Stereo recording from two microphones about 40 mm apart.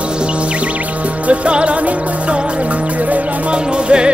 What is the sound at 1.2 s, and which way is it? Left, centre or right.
Music, right.